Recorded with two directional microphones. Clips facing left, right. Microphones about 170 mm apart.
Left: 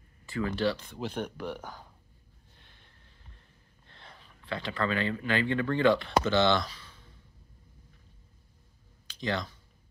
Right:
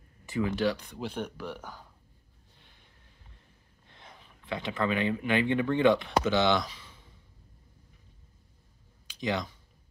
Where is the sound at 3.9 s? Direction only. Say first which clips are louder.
Right 1 dB; 15° right (ahead or behind).